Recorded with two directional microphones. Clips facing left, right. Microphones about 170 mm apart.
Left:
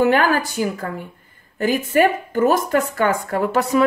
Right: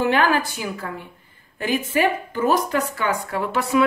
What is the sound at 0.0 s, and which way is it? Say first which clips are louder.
A woman's voice: left 3 dB; 45° left (ahead or behind).